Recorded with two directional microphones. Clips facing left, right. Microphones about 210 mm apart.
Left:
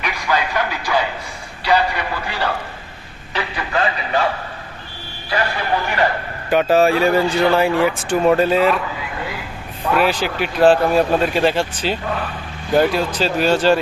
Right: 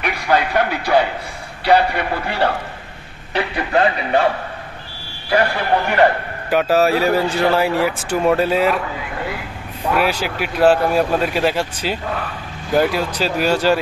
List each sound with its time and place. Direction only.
0.0 s music: 55° right (ahead or behind)
1.6 s a man's voice: 55° right (ahead or behind)
5.3 s a man's voice: 55° right (ahead or behind)
6.5 s speech: 5° right (ahead or behind)
9.9 s speech: 10° right (ahead or behind)